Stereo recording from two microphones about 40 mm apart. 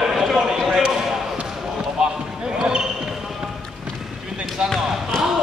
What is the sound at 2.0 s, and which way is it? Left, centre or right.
Basketball bounce, centre.